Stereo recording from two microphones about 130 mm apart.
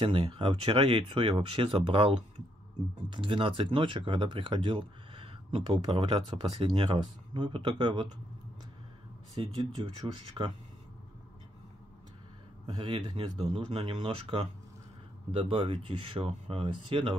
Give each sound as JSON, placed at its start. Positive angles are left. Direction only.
{"t": 0.0, "sound": "speech", "side_deg": -40}
{"t": 9.4, "sound": "speech", "side_deg": -40}
{"t": 12.6, "sound": "speech", "side_deg": -40}
{"t": 13.4, "sound": "speech", "side_deg": -50}